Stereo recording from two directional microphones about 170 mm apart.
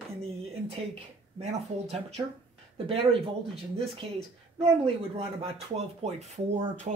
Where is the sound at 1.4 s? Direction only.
40° right (ahead or behind).